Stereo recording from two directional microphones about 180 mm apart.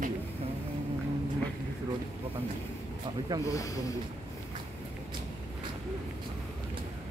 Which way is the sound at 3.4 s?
20° left (ahead or behind).